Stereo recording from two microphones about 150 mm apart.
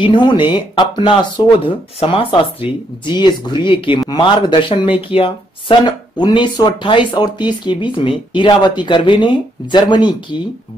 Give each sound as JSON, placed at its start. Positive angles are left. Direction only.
{"t": 0.0, "sound": "speech", "side_deg": 30}